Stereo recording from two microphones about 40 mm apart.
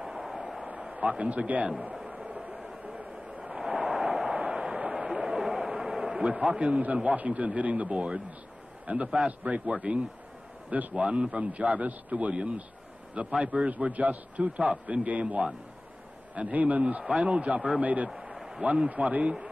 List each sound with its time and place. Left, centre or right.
0.9 s a man's voice: right
2.0 s a sound: right
2.5 s a sound: centre
6.8 s a man's voice: right
10.7 s a man's voice: right
11.0 s a man's voice: right
17.7 s a man's voice: right
18.1 s a sound: centre
18.9 s a man's voice: right